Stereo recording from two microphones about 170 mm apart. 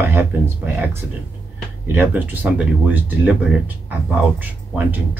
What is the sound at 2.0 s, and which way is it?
Speech, 10° right (ahead or behind).